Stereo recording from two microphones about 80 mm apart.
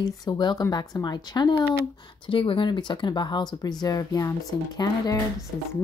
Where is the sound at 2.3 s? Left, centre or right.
Left.